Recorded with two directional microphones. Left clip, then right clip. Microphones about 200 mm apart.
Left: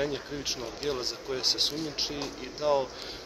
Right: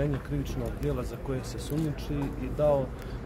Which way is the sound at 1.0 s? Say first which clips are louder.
Left 7 dB; 30° right (ahead or behind).